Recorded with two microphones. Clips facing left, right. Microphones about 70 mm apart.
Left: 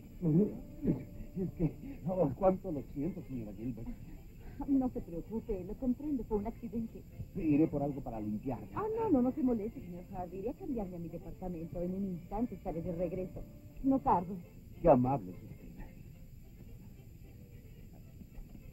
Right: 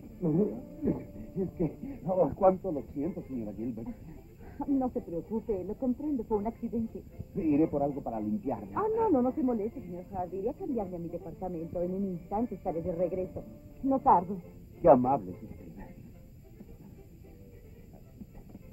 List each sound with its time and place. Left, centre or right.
0.2 s speech: right